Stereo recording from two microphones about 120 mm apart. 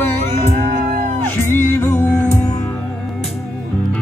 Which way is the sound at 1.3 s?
20° left (ahead or behind).